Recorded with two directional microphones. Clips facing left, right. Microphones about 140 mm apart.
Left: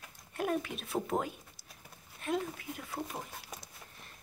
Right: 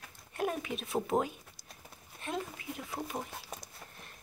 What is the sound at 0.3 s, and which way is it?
Speech, centre (ahead or behind).